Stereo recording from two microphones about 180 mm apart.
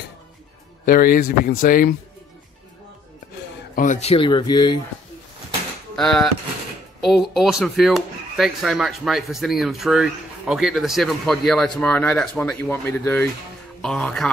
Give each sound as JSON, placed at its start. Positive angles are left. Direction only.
{"t": 0.8, "sound": "speech", "side_deg": 50}
{"t": 3.7, "sound": "speech", "side_deg": 45}
{"t": 5.9, "sound": "speech", "side_deg": 0}